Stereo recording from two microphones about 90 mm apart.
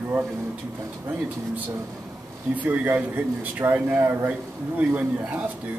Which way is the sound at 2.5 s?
20° right (ahead or behind).